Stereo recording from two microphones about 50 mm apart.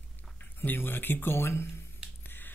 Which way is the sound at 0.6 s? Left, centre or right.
Left.